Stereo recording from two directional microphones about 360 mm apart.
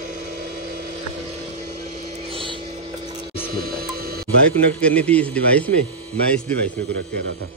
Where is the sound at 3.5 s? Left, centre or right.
Right.